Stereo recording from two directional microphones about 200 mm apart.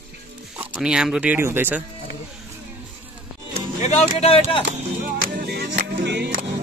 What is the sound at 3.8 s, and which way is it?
Speech, 35° left (ahead or behind).